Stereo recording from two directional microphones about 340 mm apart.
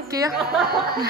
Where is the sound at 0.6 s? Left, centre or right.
Right.